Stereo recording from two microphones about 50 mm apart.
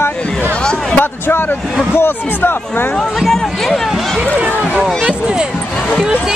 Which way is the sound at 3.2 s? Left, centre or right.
Centre.